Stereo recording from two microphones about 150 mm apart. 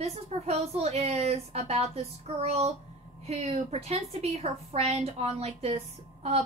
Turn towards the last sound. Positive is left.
turn(degrees=-45)  # may be behind; listen again after turning